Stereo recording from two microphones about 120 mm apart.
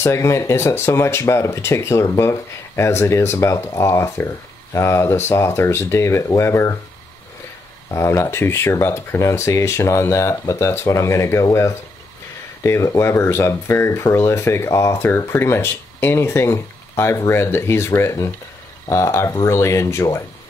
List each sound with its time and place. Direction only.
0.0 s speech: 20° left (ahead or behind)
7.9 s speech: 25° left (ahead or behind)